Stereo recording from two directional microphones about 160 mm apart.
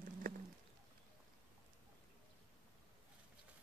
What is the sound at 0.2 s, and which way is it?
Bird, 65° right (ahead or behind).